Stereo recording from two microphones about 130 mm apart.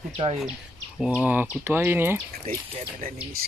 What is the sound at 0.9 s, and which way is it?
Speech, centre (ahead or behind).